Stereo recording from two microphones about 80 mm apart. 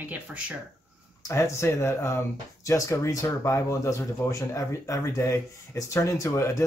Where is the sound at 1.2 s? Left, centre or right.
Left.